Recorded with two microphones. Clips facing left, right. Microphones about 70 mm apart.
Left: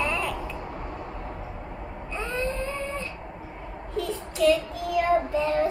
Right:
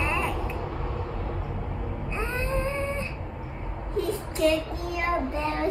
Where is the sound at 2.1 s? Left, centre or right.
Right.